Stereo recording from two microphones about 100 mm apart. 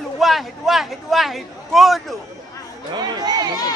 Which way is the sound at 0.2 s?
Centre (ahead or behind).